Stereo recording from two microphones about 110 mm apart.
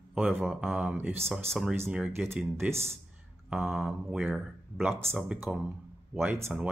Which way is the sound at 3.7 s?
5° right (ahead or behind).